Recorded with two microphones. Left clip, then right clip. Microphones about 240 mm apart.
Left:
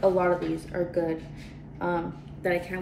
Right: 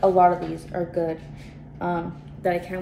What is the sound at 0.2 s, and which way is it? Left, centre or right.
Speech, centre.